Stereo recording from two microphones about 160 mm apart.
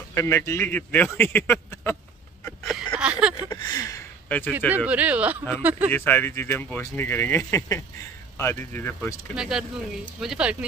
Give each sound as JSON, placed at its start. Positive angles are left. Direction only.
{"t": 0.1, "sound": "speech", "side_deg": 15}
{"t": 2.6, "sound": "a sound", "side_deg": -5}
{"t": 3.4, "sound": "a sound", "side_deg": 20}
{"t": 4.6, "sound": "speech", "side_deg": -10}
{"t": 5.9, "sound": "speech", "side_deg": 10}
{"t": 9.3, "sound": "speech", "side_deg": -5}